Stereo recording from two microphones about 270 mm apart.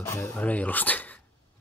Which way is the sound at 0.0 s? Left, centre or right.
Centre.